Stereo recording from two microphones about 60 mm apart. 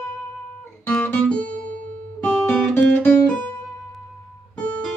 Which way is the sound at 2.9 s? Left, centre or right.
Left.